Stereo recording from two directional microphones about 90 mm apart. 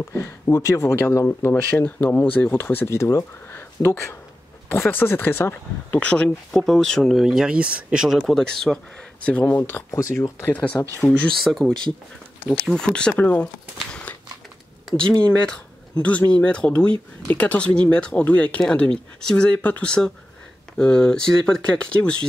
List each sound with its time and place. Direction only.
0.0 s speech: 30° left (ahead or behind); by 8.8 s 5° right (ahead or behind)
9.2 s speech: 15° left (ahead or behind)
10.5 s speech: 15° left (ahead or behind)
11.1 s speech: 5° left (ahead or behind); by 13.5 s 20° left (ahead or behind)
16.0 s speech: 15° left (ahead or behind)